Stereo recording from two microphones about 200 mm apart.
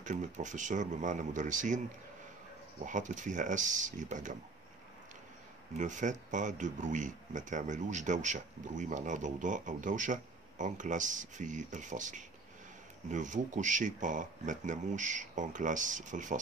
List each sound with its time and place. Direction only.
0.0 s speech: 40° right (ahead or behind)
2.8 s speech: 40° right (ahead or behind)
5.8 s speech: 40° right (ahead or behind)